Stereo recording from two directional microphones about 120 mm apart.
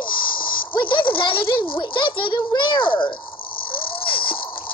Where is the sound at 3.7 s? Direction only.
45° left (ahead or behind).